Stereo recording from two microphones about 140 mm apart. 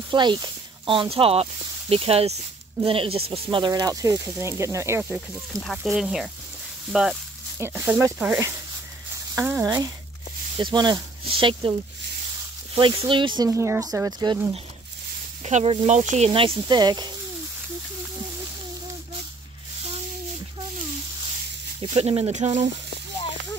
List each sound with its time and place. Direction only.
0.1 s speech: 35° right (ahead or behind)
5.5 s speech: 5° left (ahead or behind)
7.5 s speech: 20° right (ahead or behind)
9.4 s speech: 10° right (ahead or behind)
10.6 s speech: 30° right (ahead or behind)
12.7 s speech: 35° right (ahead or behind)
15.4 s speech: 50° right (ahead or behind)
16.3 s speech: 40° right (ahead or behind)
21.9 s speech: 45° right (ahead or behind)